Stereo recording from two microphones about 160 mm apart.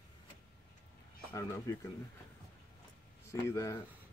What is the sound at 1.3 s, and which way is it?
Speech, 20° left (ahead or behind).